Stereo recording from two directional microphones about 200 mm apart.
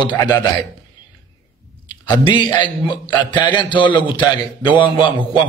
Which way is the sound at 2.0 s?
25° left (ahead or behind).